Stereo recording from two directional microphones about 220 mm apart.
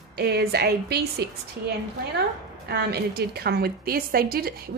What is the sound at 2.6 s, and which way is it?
A woman's voice, 45° right (ahead or behind).